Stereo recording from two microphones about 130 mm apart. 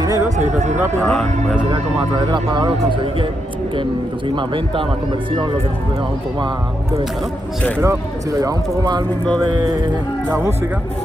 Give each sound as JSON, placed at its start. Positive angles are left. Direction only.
{"t": 0.0, "sound": "a sound", "side_deg": -25}
{"t": 0.4, "sound": "speech", "side_deg": -65}
{"t": 1.0, "sound": "speech", "side_deg": 5}
{"t": 1.6, "sound": "speech", "side_deg": -35}
{"t": 7.8, "sound": "speech", "side_deg": -25}